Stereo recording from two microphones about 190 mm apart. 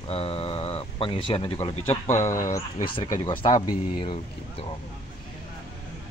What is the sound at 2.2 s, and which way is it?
Speech, 40° left (ahead or behind).